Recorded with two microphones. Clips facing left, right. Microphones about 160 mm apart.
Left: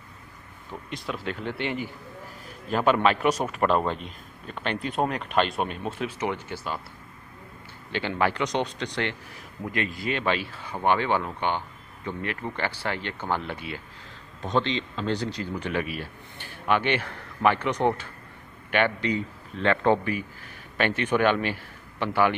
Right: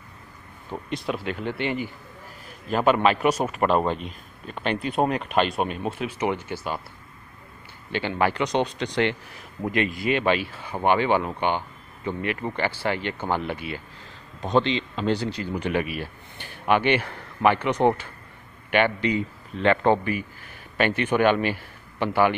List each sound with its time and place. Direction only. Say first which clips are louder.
0.7 s speech: right 5 dB; 40° right (ahead or behind)
1.0 s speech: right 2 dB; 10° right (ahead or behind)
7.9 s a man's voice: right 2 dB; 5° right (ahead or behind)